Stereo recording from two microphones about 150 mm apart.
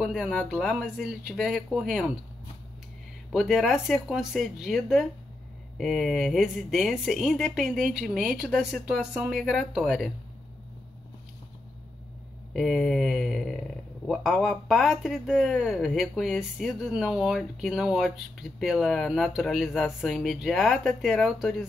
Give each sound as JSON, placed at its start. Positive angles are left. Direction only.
{"t": 0.0, "sound": "speech", "side_deg": -5}
{"t": 3.3, "sound": "speech", "side_deg": 0}
{"t": 12.5, "sound": "speech", "side_deg": 0}